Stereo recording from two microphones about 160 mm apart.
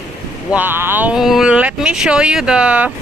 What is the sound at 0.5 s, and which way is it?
Speech, 10° right (ahead or behind).